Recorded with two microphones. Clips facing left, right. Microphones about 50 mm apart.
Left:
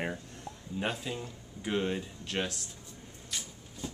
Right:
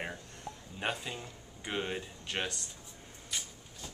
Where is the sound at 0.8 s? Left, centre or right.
Centre.